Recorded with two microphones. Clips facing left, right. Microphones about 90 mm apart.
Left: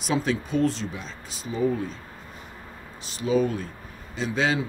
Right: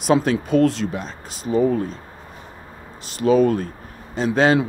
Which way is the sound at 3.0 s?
60° right (ahead or behind).